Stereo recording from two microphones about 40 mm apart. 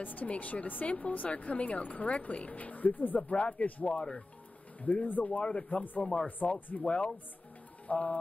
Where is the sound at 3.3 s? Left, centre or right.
Left.